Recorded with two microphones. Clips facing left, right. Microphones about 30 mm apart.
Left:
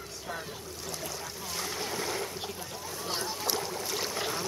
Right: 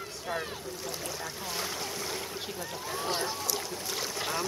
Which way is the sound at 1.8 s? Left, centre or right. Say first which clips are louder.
Left 2 dB; centre.